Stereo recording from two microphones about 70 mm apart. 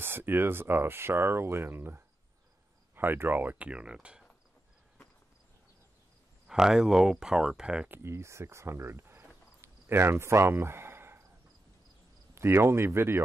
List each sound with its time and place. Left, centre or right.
0.0 s speech: right; by 4.3 s centre
6.4 s speech: centre
7.9 s speech: right
12.4 s speech: right